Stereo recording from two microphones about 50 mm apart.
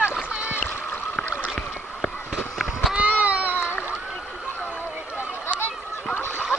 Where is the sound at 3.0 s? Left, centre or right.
Right.